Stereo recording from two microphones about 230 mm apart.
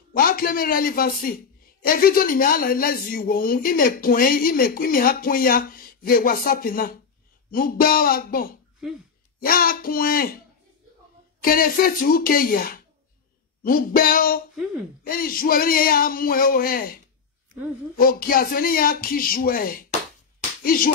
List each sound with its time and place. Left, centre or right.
0.1 s a woman's voice: left
11.4 s a woman's voice: left
14.5 s a woman's voice: centre
15.0 s a woman's voice: left
20.3 s slap: left